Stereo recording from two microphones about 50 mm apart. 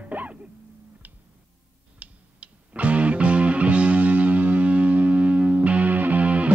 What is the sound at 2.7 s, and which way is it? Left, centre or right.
Music, right.